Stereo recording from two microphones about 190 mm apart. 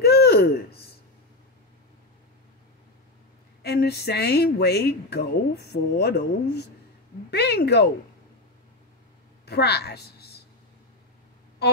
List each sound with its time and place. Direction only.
0.0 s a sound: 60° left (ahead or behind)
3.6 s speech: 60° left (ahead or behind)
9.5 s speech: 60° left (ahead or behind)